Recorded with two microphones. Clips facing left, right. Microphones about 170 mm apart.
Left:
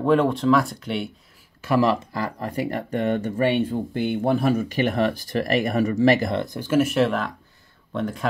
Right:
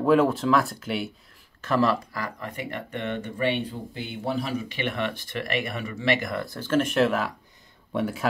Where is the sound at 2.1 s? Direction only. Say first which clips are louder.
Left 6 dB; 35° left (ahead or behind).